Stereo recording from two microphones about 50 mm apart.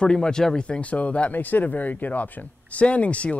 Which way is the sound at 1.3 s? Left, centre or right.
Left.